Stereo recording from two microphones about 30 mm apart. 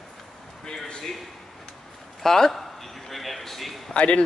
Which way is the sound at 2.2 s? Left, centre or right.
Centre.